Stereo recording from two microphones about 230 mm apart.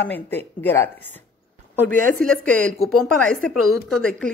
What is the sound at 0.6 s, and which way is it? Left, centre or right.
Speech, centre.